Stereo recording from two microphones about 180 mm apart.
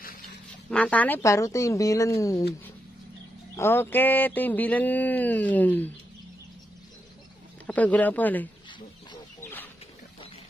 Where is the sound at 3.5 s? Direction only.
15° left (ahead or behind).